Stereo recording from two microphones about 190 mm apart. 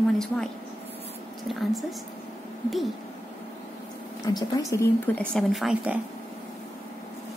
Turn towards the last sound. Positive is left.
turn(degrees=-5)  # may be behind; listen again after turning